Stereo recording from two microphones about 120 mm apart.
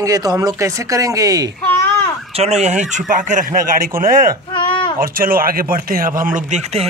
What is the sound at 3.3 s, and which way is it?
Speech, 90° right.